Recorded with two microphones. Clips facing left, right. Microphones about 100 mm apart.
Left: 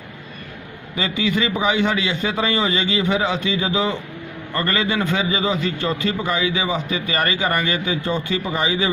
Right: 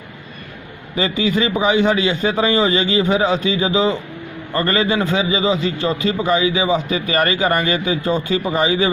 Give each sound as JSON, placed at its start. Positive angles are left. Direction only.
{"t": 0.9, "sound": "a man's voice", "side_deg": -35}
{"t": 3.5, "sound": "a man's voice", "side_deg": -25}
{"t": 5.2, "sound": "a man's voice", "side_deg": -5}
{"t": 6.2, "sound": "a man's voice", "side_deg": -30}